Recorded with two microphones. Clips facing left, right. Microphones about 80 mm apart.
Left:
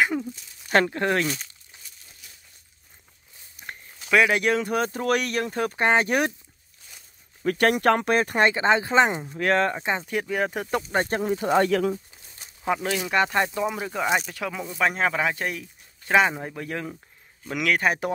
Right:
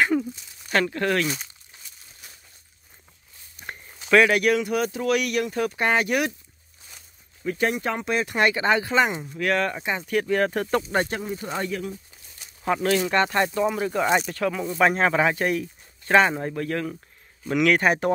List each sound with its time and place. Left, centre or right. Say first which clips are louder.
0.0 s a sound: right 2 dB; centre
0.7 s speech: left 1 dB; left
1.2 s speech: even; centre
3.5 s a sound: right 2 dB; centre
4.3 s speech: right 2 dB; left
7.4 s speech: left 5 dB; left
8.1 s speech: left 3 dB; left
8.4 s speech: right 1 dB; left
10.2 s speech: right 4 dB; centre
11.1 s speech: left 5 dB; left
11.3 s speech: left 12 dB; left
12.4 s a sound: left 1 dB; left
12.9 s speech: right 1 dB; centre
17.5 s speech: right 4 dB; centre